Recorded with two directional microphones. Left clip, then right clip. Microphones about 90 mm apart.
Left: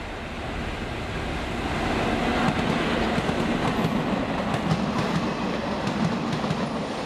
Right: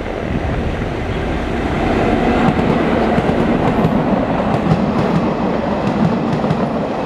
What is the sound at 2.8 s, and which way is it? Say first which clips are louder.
Vehicle: right 9 dB; 45° left (ahead or behind).